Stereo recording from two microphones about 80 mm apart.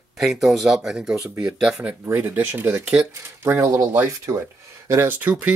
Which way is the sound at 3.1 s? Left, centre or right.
Right.